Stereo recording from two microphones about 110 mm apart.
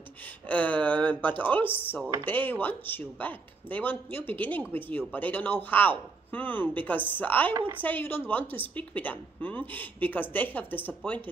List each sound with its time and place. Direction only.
0.5 s speech: 15° left (ahead or behind)